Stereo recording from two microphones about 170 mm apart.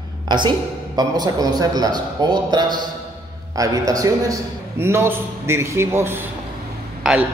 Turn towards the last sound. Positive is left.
turn(degrees=-5)  # may be behind; listen again after turning